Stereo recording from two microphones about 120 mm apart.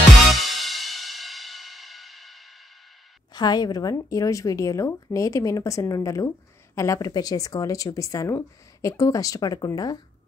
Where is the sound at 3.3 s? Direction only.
35° left (ahead or behind).